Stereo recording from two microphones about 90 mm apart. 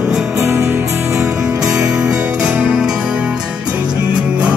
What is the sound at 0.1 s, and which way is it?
Music, 5° right (ahead or behind).